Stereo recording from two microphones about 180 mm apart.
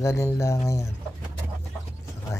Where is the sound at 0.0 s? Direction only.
15° left (ahead or behind).